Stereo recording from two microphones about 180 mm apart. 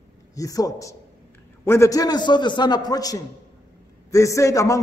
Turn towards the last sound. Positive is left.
turn(degrees=15)  # may be behind; listen again after turning